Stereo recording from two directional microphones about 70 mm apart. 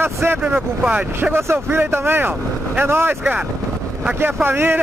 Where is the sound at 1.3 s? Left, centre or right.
Right.